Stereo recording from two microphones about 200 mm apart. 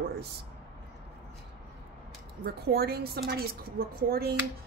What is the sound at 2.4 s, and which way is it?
Speech, 50° right (ahead or behind).